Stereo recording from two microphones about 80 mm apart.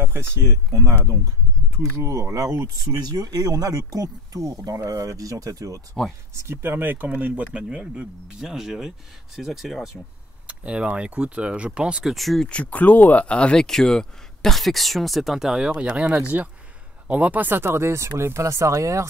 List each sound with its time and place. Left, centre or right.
0.0 s speech: right
6.4 s speech: right; by 9.8 s centre
10.4 s speech: centre
12.0 s speech: centre
12.4 s speech: centre; by 19.0 s right